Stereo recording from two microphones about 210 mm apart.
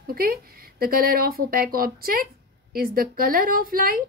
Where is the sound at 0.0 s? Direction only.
45° right (ahead or behind).